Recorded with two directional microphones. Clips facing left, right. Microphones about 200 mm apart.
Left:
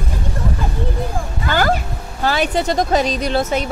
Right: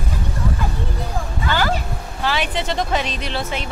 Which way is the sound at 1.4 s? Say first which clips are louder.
Left 4 dB; 50° left (ahead or behind).